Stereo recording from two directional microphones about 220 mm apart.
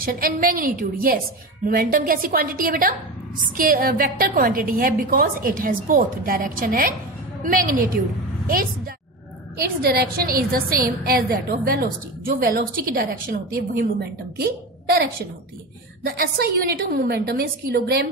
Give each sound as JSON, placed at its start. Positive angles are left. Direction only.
{"t": 0.0, "sound": "a woman's voice", "side_deg": -40}
{"t": 9.6, "sound": "a woman's voice", "side_deg": -45}
{"t": 16.1, "sound": "a woman's voice", "side_deg": -45}